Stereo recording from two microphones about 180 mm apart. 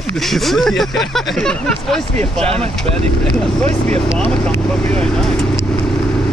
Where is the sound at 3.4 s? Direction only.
5° left (ahead or behind).